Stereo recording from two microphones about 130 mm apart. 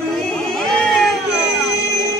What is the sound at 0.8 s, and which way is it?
Baby cry, centre (ahead or behind).